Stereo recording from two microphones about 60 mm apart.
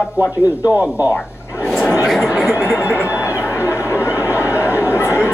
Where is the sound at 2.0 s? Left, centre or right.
Centre.